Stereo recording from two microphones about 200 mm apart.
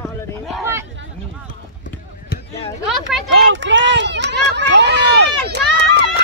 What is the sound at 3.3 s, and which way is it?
Run, 65° right (ahead or behind).